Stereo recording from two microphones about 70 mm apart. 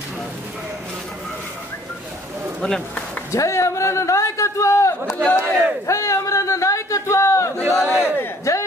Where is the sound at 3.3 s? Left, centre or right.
Left.